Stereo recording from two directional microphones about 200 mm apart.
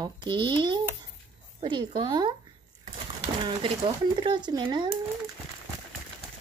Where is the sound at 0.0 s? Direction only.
25° right (ahead or behind).